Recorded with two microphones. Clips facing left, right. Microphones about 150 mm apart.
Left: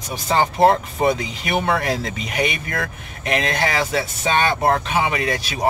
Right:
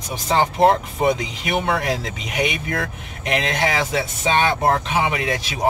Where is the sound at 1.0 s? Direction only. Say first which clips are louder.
Even; 15° right (ahead or behind).